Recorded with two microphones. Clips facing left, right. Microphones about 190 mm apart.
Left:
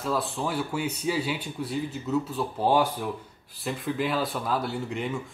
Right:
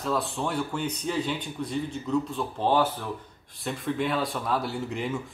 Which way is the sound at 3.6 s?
Centre (ahead or behind).